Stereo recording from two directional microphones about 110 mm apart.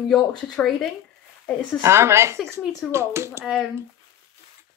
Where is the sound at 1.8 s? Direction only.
25° right (ahead or behind).